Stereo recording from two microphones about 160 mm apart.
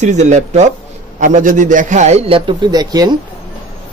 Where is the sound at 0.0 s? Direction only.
45° right (ahead or behind); by 3.2 s 25° right (ahead or behind).